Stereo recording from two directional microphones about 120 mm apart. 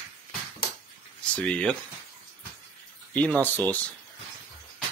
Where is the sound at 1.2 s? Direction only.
10° left (ahead or behind).